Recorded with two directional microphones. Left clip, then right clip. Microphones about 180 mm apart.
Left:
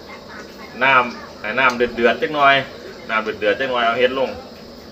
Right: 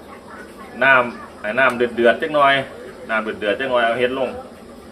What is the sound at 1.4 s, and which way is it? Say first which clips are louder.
Speech: even; 20° right (ahead or behind).